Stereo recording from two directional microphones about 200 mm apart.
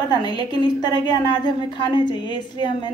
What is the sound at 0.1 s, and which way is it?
A woman's voice, 20° left (ahead or behind).